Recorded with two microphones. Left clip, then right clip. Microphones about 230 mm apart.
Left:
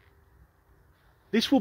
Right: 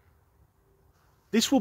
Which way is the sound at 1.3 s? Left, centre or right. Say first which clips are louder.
Even; centre.